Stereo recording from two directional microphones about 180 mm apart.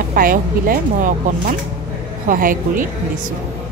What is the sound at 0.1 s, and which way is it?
Speech, 50° right (ahead or behind).